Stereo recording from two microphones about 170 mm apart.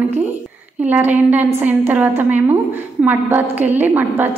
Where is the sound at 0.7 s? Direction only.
10° right (ahead or behind).